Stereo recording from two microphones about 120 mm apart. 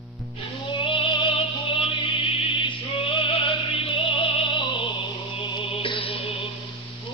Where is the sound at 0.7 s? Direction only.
45° left (ahead or behind).